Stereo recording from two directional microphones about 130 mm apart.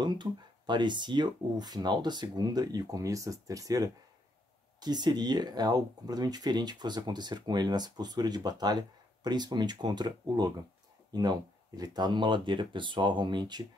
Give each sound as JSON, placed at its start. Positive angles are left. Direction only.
{"t": 0.0, "sound": "speech", "side_deg": -35}